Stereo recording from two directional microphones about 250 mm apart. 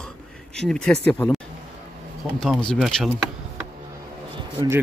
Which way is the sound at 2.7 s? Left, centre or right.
Centre.